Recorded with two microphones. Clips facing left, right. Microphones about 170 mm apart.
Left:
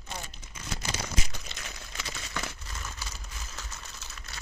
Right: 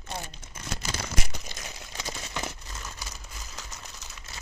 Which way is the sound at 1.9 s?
25° right (ahead or behind).